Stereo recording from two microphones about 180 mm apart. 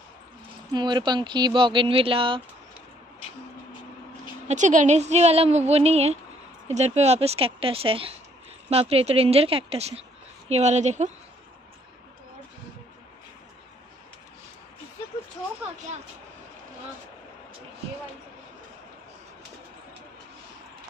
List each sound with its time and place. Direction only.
0.7 s speech: 25° right (ahead or behind)
4.5 s speech: 45° right (ahead or behind)